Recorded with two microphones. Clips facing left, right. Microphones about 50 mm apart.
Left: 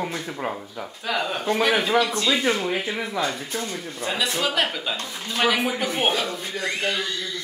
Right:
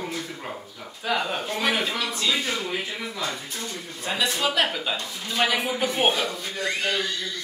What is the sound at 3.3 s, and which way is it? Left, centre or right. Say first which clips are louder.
Speech: left 4 dB; left.